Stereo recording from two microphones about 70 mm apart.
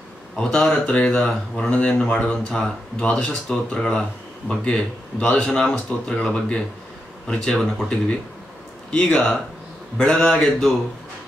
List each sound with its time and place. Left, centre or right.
0.4 s speech: centre